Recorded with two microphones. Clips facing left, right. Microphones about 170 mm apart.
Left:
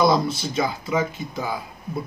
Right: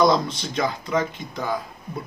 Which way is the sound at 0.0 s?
5° left (ahead or behind).